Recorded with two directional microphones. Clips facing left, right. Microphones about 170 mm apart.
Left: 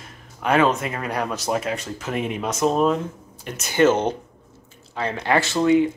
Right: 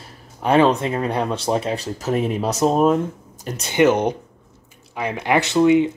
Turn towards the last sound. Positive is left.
turn(degrees=-20)  # may be behind; listen again after turning